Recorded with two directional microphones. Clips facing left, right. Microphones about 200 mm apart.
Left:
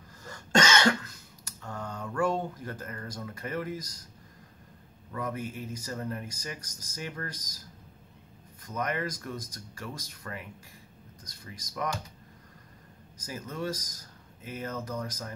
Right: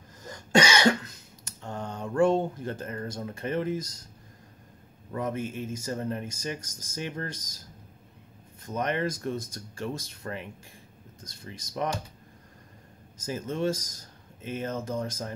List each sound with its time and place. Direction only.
0.2 s cough: 15° right (ahead or behind)
5.1 s speech: 25° right (ahead or behind)
8.6 s speech: 25° right (ahead or behind)
13.2 s speech: 25° right (ahead or behind)